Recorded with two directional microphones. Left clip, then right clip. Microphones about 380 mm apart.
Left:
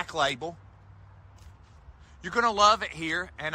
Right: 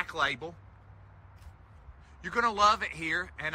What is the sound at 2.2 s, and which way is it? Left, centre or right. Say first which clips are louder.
A man's voice: left 3 dB; centre.